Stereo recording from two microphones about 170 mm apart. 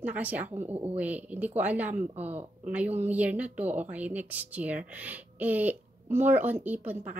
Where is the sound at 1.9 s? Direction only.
50° right (ahead or behind).